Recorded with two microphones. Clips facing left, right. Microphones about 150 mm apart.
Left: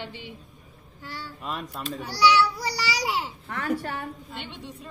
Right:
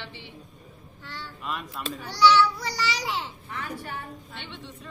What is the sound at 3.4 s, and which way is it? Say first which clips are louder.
Speech: left 7 dB; 50° left (ahead or behind).